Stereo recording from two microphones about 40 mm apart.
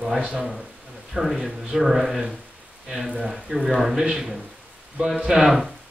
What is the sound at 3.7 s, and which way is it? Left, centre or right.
Speech, centre.